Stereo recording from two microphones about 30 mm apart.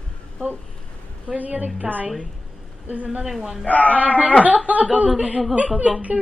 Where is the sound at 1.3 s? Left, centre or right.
Right.